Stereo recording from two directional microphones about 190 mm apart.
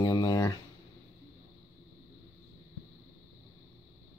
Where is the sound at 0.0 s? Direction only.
20° left (ahead or behind).